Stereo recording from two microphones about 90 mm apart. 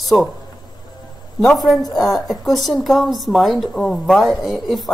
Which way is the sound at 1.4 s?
5° left (ahead or behind).